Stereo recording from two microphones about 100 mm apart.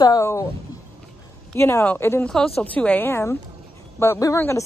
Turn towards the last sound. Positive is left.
turn(degrees=30)  # may be behind; listen again after turning